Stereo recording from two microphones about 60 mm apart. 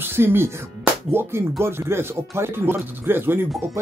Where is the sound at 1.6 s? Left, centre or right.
Right.